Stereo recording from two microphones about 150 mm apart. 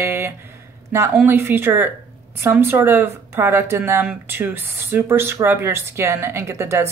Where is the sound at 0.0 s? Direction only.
15° right (ahead or behind).